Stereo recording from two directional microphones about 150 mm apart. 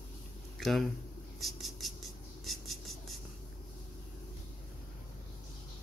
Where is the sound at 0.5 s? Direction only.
Centre (ahead or behind).